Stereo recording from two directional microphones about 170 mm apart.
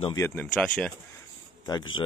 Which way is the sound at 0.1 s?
15° left (ahead or behind).